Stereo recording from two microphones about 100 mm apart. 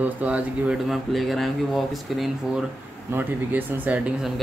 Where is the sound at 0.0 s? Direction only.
15° right (ahead or behind).